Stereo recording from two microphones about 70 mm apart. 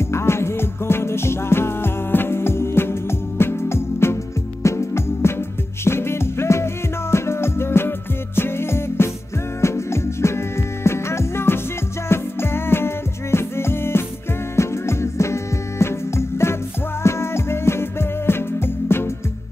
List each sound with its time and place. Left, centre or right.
0.0 s music: left